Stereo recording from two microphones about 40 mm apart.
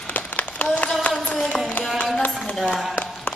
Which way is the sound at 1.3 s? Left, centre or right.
Left.